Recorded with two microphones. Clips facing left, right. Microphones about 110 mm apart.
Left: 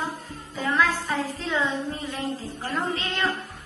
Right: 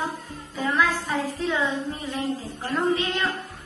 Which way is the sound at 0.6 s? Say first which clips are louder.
Even; 15° right (ahead or behind).